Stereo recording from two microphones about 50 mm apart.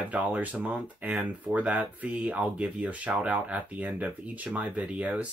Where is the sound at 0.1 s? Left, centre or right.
Right.